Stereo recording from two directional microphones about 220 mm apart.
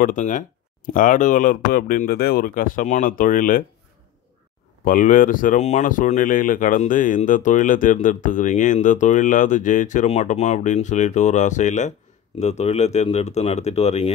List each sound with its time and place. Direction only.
0.0 s speech: 35° left (ahead or behind)
4.8 s speech: 40° left (ahead or behind)